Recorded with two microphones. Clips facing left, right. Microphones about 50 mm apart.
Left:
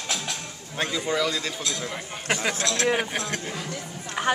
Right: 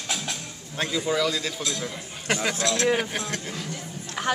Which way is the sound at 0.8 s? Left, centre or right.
Centre.